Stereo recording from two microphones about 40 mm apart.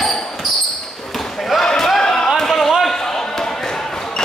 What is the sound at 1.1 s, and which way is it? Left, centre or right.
Basketball bounce, centre.